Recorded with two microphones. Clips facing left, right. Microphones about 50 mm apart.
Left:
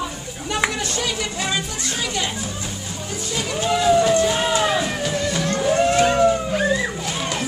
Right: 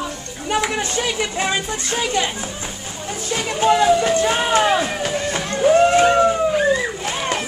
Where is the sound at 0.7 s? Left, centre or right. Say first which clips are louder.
Right 3 dB; right.